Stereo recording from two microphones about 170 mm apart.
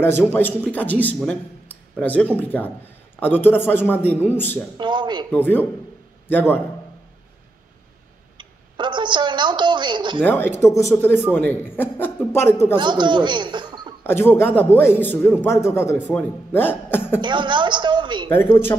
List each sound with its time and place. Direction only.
0.0 s a man's voice: 10° left (ahead or behind)
4.7 s a woman's voice: 25° right (ahead or behind)
5.3 s a man's voice: 10° left (ahead or behind)
8.4 s a sound: 25° right (ahead or behind)
10.2 s a man's voice: 10° left (ahead or behind)
12.7 s a woman's voice: 25° right (ahead or behind)
14.0 s a man's voice: 15° left (ahead or behind)
17.2 s a woman's voice: 25° right (ahead or behind)
18.3 s a man's voice: 15° left (ahead or behind)